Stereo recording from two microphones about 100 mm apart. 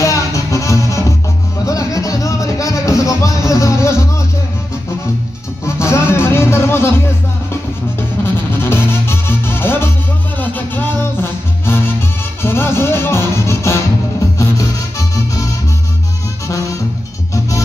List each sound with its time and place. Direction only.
0.0 s music: 35° left (ahead or behind)
5.8 s music: 30° left (ahead or behind)
8.2 s music: 25° left (ahead or behind)
16.4 s music: 35° left (ahead or behind)